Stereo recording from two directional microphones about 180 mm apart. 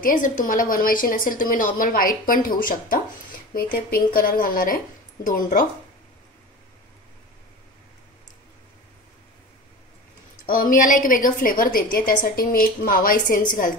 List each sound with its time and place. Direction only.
0.0 s a woman's voice: 50° left (ahead or behind)
10.4 s a woman's voice: 50° left (ahead or behind)